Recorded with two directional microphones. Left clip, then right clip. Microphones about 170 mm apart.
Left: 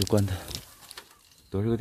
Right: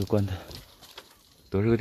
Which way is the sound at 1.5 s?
15° right (ahead or behind).